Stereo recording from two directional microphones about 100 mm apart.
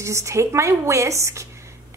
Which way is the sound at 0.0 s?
30° right (ahead or behind).